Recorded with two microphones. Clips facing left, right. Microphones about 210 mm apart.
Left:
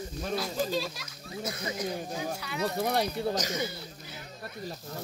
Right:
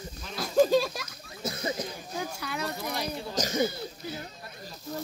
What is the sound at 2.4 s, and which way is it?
Speech, 45° right (ahead or behind).